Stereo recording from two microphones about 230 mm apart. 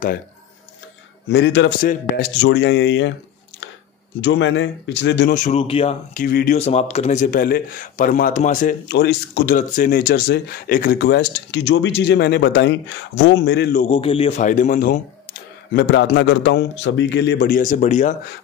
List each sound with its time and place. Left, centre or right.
1.3 s speech: left
4.2 s speech: left
5.3 s speech: left
6.2 s speech: left
13.8 s speech: left